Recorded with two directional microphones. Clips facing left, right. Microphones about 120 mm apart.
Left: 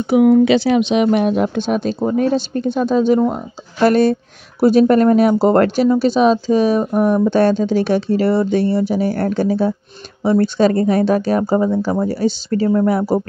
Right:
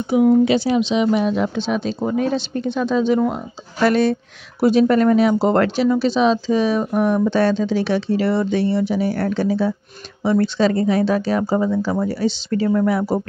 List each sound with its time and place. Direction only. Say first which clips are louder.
0.1 s speech: left 3 dB; 75° left (ahead or behind); by 2.0 s 50° left (ahead or behind)
2.0 s speech: left 4 dB; 40° left (ahead or behind)